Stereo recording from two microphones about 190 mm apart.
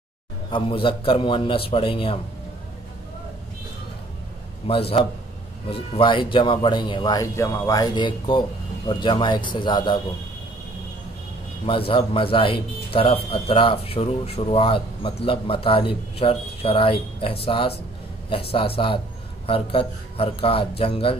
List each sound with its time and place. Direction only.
0.5 s speech: 25° left (ahead or behind)
4.6 s speech: 30° left (ahead or behind)
11.6 s speech: 30° left (ahead or behind)